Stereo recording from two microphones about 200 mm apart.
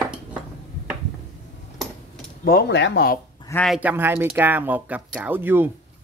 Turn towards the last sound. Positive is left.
turn(degrees=-10)  # may be behind; listen again after turning